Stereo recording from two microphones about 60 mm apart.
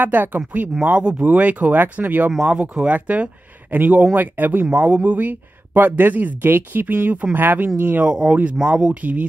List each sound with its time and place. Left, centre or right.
0.0 s speech: right
2.4 s speech: centre
8.1 s speech: centre